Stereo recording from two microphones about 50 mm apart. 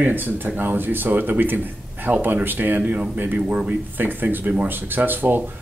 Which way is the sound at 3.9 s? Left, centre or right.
Right.